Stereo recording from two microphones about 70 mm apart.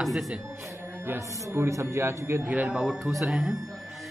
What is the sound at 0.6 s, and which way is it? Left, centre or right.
Music, right.